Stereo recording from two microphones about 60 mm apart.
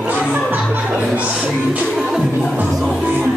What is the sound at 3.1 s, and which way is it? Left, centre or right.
Music, right.